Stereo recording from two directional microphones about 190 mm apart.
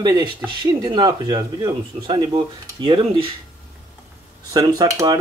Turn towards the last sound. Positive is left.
turn(degrees=-20)  # may be behind; listen again after turning